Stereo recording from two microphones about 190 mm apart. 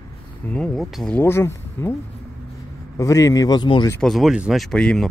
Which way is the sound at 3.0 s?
15° left (ahead or behind).